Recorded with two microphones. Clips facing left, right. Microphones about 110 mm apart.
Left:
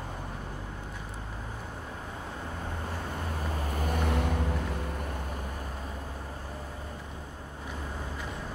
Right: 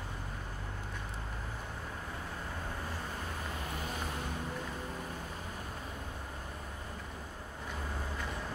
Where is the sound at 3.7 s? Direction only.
55° left (ahead or behind).